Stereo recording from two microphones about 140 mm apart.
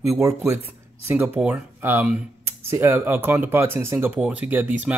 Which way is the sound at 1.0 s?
15° right (ahead or behind).